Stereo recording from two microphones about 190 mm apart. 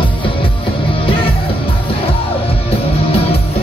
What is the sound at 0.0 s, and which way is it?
Music, 25° left (ahead or behind).